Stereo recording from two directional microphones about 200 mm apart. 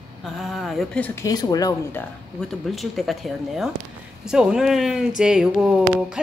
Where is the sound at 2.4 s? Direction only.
Centre (ahead or behind).